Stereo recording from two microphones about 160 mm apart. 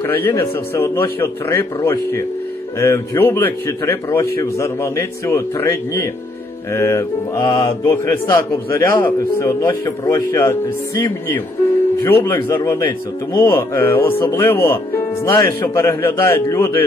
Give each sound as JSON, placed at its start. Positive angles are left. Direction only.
{"t": 0.0, "sound": "a man's voice", "side_deg": 15}